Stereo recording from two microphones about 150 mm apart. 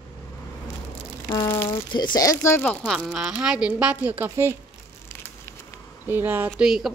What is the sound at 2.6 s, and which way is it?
Speech, 10° left (ahead or behind).